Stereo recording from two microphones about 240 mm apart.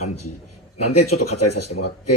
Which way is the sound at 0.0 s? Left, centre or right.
Left.